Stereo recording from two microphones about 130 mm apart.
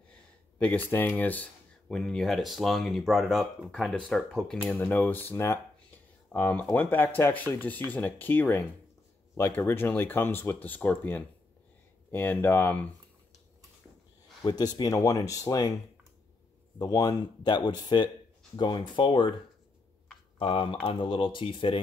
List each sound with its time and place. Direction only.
0.1 s speech: 10° left (ahead or behind)
4.6 s speech: 15° left (ahead or behind)
14.4 s speech: 30° left (ahead or behind)
16.7 s speech: 25° left (ahead or behind)
20.3 s speech: 45° left (ahead or behind)